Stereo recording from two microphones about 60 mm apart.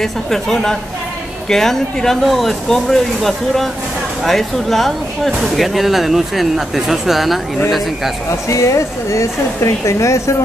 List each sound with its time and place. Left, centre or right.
0.0 s speech: centre
8.3 s speech: left